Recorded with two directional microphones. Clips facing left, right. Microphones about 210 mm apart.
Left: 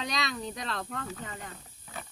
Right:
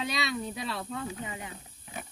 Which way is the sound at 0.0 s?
5° right (ahead or behind).